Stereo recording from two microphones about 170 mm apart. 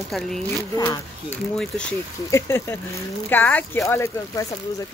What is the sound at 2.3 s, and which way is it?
Speech, 15° left (ahead or behind).